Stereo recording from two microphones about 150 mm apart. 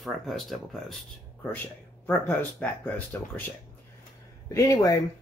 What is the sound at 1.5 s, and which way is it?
Speech, 10° left (ahead or behind).